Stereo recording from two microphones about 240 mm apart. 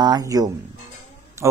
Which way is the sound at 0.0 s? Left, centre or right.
Centre.